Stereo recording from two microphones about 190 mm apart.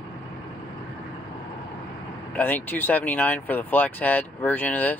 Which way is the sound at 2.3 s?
10° left (ahead or behind).